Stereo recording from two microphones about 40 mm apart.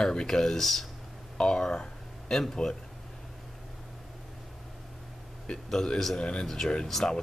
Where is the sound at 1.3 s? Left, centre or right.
Centre.